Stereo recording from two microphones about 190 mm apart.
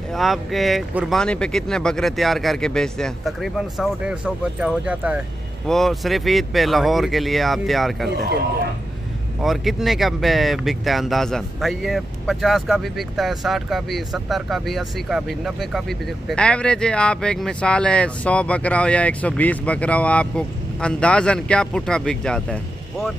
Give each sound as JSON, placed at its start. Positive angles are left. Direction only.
{"t": 0.1, "sound": "speech", "side_deg": 0}
{"t": 9.4, "sound": "speech", "side_deg": 0}